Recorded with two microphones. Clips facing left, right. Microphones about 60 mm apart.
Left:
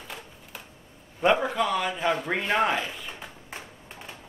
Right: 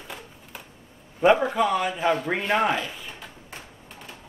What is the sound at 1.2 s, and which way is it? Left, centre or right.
A man's voice, centre.